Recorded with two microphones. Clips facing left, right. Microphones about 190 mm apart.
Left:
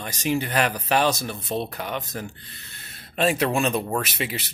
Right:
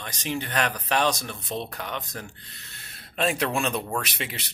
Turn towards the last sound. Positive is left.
turn(degrees=5)  # may be behind; listen again after turning